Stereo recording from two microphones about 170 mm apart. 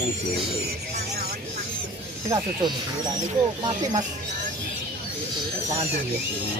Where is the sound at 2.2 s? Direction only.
20° right (ahead or behind).